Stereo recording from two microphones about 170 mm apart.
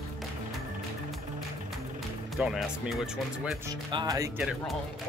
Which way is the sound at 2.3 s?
5° right (ahead or behind).